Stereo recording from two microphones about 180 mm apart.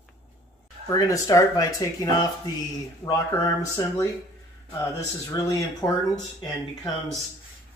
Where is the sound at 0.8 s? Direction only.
20° left (ahead or behind).